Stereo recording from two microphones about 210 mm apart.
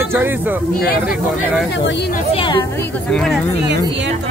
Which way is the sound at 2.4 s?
20° left (ahead or behind).